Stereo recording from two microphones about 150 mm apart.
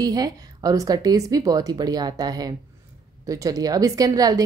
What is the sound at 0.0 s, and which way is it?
Speech, 25° right (ahead or behind).